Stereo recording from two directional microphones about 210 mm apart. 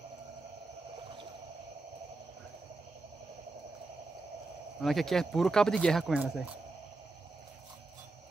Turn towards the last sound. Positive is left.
turn(degrees=-5)  # may be behind; listen again after turning